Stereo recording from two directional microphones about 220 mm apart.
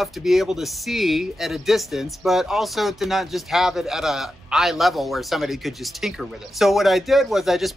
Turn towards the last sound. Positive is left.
turn(degrees=0)  # may be behind; listen again after turning